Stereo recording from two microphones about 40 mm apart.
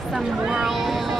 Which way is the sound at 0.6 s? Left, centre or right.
Centre.